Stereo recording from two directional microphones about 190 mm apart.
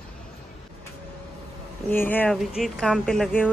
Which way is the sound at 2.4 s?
Centre (ahead or behind).